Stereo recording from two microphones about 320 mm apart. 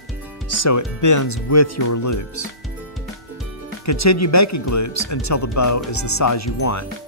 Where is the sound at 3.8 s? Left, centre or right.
Left.